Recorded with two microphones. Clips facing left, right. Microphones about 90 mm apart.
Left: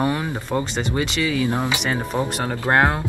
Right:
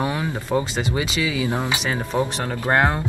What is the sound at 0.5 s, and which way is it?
Speech, 5° right (ahead or behind).